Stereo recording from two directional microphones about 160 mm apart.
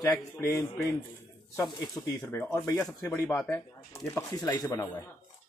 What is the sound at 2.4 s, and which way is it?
Speech, 15° left (ahead or behind).